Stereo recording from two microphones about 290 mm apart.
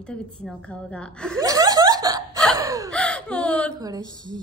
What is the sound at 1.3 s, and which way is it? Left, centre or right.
Chuckle, centre.